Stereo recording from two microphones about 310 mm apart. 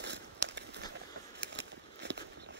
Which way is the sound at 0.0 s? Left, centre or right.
Right.